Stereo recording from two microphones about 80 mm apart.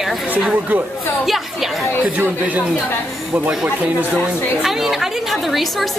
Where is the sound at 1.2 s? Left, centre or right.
Centre.